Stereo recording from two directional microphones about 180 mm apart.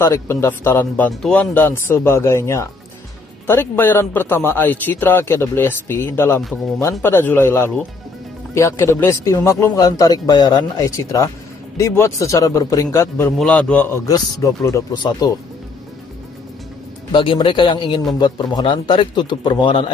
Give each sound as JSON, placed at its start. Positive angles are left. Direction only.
{"t": 0.0, "sound": "a man's voice", "side_deg": 15}
{"t": 13.4, "sound": "a man's voice", "side_deg": 5}
{"t": 17.1, "sound": "speech", "side_deg": 25}